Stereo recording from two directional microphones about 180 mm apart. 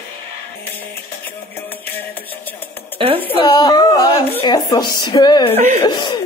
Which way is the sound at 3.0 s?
30° right (ahead or behind).